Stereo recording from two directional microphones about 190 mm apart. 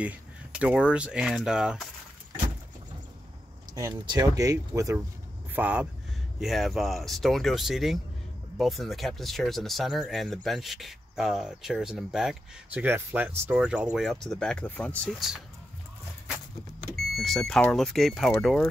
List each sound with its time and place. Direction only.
0.0 s speech: 5° right (ahead or behind)
3.7 s speech: 20° right (ahead or behind); by 15.4 s centre (ahead or behind)
17.2 s speech: centre (ahead or behind)